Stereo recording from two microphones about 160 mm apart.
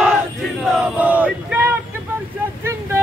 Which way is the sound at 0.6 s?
5° right (ahead or behind).